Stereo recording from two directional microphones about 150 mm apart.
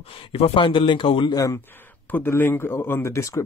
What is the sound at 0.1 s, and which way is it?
Speech, 40° left (ahead or behind).